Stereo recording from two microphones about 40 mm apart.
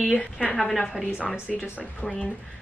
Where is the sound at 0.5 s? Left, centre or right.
Centre.